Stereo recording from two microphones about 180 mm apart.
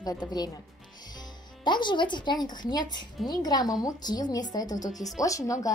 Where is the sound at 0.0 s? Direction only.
20° left (ahead or behind).